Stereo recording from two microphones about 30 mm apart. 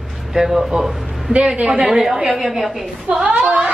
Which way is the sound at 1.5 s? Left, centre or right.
Right.